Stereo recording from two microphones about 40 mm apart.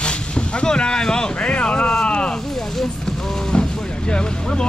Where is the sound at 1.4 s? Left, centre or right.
Left.